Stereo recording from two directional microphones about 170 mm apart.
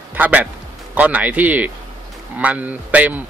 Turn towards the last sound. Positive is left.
turn(degrees=-10)  # may be behind; listen again after turning